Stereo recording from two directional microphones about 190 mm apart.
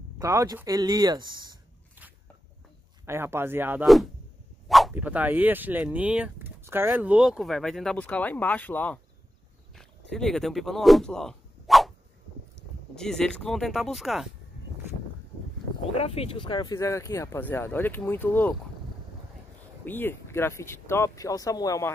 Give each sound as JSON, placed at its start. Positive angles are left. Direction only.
{"t": 0.2, "sound": "speech", "side_deg": -20}
{"t": 3.1, "sound": "speech", "side_deg": -15}
{"t": 3.8, "sound": "speech", "side_deg": 0}
{"t": 4.6, "sound": "dog", "side_deg": 0}
{"t": 4.9, "sound": "speech", "side_deg": -10}
{"t": 12.9, "sound": "speech", "side_deg": 5}
{"t": 15.9, "sound": "speech", "side_deg": 30}
{"t": 19.8, "sound": "speech", "side_deg": 10}